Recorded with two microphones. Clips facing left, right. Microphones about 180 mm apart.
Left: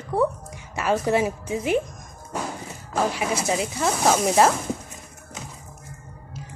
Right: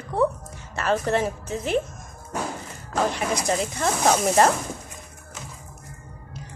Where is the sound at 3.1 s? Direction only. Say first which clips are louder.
Even; 5° left (ahead or behind).